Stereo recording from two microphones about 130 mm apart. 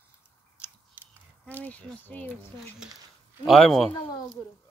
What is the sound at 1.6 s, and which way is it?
Speech, 10° left (ahead or behind).